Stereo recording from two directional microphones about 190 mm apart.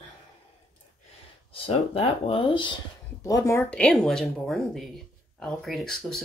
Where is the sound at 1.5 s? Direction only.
30° left (ahead or behind).